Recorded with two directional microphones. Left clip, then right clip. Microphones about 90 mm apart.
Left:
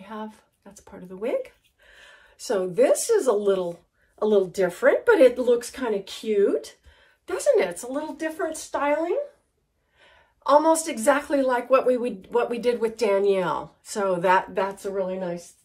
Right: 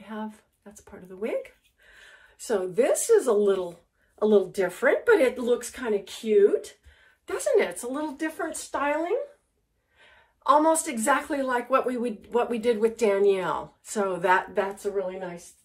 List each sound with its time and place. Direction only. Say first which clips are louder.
0.0 s a sound: left 1 dB; 35° left (ahead or behind)
0.8 s speech: left 3 dB; 35° left (ahead or behind)
2.4 s a woman's voice: left 3 dB; 25° left (ahead or behind)
4.2 s speech: left 1 dB; 10° left (ahead or behind)
5.0 s a woman's voice: left 5 dB; 20° left (ahead or behind)
5.4 s speech: left 4 dB; 35° left (ahead or behind)
7.4 s a woman's voice: left 3 dB; 20° left (ahead or behind)
7.9 s speech: left 2 dB; centre (ahead or behind)
10.4 s a woman's voice: left 2 dB; 15° left (ahead or behind)